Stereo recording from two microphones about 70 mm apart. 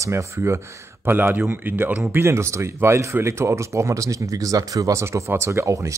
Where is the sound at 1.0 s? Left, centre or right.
Right.